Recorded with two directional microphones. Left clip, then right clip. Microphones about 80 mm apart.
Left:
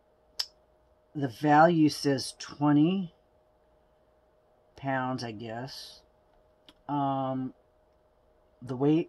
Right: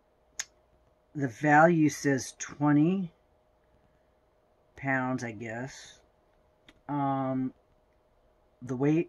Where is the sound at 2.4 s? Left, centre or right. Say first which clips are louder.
Left 1 dB; right.